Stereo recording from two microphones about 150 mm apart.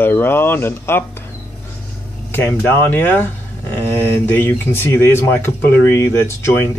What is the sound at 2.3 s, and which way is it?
Speech, 15° left (ahead or behind).